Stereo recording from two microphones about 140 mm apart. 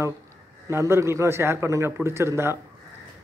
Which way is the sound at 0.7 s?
20° right (ahead or behind).